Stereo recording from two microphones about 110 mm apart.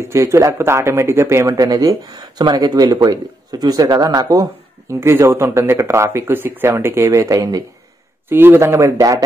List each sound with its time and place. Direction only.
0.0 s speech: 25° right (ahead or behind)
8.3 s speech: 20° right (ahead or behind)